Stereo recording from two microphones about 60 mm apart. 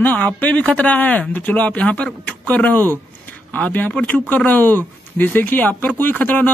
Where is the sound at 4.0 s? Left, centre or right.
Left.